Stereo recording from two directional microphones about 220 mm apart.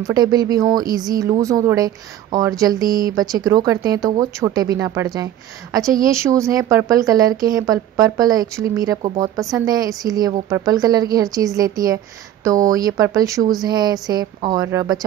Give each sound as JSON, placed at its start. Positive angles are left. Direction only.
{"t": 0.0, "sound": "speech", "side_deg": -15}